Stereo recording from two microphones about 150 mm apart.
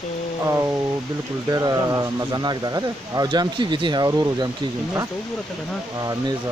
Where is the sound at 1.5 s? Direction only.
25° right (ahead or behind).